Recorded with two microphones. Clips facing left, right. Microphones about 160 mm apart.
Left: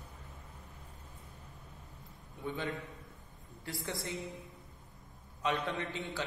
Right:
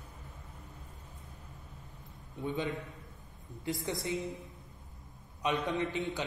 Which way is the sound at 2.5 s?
20° right (ahead or behind).